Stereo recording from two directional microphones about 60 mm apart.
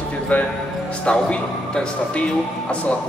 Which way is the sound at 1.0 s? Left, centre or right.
Centre.